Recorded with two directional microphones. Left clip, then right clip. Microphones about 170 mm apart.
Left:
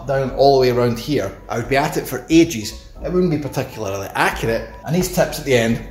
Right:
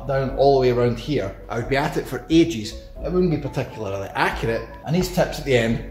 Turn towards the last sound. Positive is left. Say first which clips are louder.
# left 3 dB
turn(degrees=20)  # may be behind; listen again after turning